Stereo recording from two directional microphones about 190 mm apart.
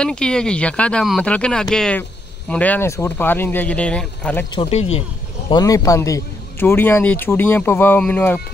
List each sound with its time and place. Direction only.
0.0 s speech: 5° left (ahead or behind)
4.6 s speech: 30° left (ahead or behind)
5.5 s speech: 20° left (ahead or behind)